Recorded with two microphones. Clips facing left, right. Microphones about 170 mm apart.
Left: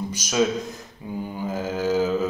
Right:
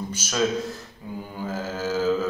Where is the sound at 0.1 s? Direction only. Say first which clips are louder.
Left 2 dB; 10° left (ahead or behind).